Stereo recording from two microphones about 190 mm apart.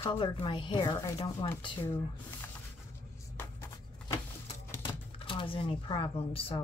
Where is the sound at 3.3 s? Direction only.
15° left (ahead or behind).